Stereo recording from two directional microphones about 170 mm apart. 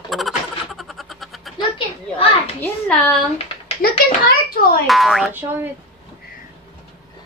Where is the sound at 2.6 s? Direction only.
5° left (ahead or behind).